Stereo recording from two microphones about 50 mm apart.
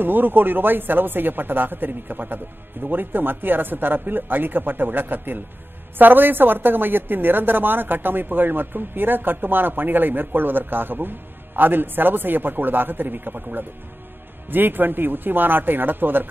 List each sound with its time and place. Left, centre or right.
0.0 s a woman's voice: right